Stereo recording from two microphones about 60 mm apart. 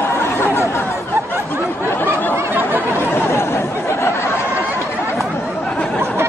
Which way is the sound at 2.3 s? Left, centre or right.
Right.